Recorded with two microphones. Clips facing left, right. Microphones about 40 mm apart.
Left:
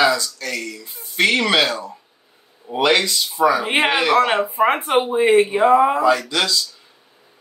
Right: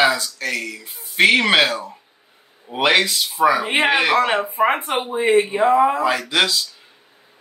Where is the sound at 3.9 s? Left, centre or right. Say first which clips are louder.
Right 2 dB; right.